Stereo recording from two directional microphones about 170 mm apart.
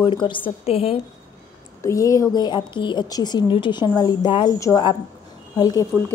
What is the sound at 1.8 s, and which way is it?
A woman's voice, 20° left (ahead or behind).